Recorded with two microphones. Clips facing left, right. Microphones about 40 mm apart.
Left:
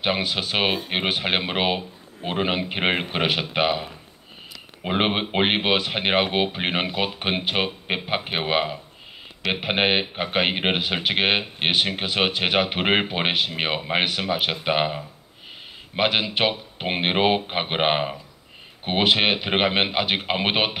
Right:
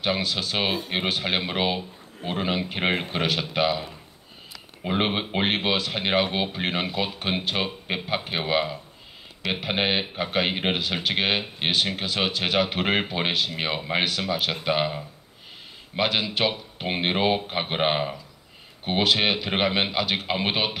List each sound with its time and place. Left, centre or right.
0.0 s speech: left
16.0 s speech: left